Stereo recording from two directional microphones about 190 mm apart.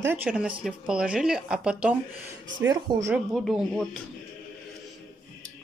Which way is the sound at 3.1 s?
Centre (ahead or behind).